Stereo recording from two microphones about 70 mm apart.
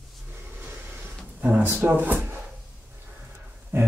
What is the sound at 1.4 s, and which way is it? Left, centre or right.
Speech, right.